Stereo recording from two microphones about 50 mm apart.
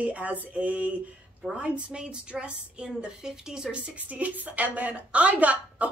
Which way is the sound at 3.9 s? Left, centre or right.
Right.